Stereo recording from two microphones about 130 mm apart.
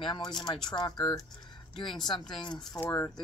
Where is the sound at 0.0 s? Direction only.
35° left (ahead or behind).